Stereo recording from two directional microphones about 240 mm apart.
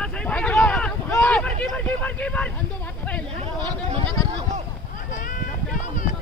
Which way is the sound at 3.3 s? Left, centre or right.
Right.